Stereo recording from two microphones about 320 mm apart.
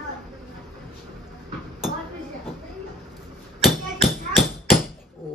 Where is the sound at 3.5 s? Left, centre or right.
Centre.